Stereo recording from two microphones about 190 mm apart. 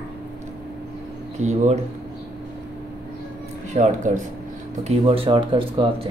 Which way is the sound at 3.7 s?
40° right (ahead or behind).